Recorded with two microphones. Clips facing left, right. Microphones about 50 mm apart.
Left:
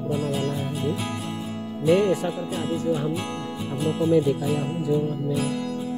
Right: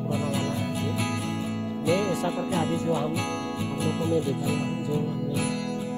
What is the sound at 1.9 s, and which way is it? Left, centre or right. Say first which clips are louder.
Speech: left 6 dB; left.